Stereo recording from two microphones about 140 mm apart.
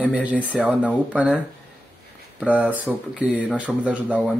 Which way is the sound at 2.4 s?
10° right (ahead or behind).